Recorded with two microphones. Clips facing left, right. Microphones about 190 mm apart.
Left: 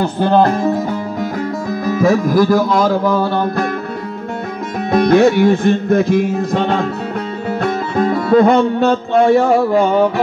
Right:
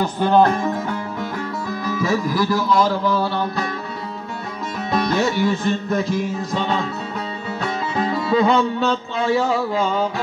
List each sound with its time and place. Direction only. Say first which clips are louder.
1.7 s music: left 8 dB; 50° left (ahead or behind)
4.9 s music: left 10 dB; 55° left (ahead or behind)